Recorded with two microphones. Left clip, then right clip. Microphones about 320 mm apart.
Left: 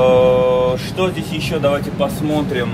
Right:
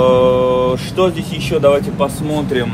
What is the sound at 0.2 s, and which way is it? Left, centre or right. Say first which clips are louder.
Mantra: right 1 dB; right.